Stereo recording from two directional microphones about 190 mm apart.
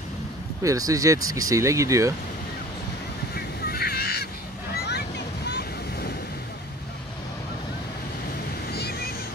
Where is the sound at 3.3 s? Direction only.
55° left (ahead or behind).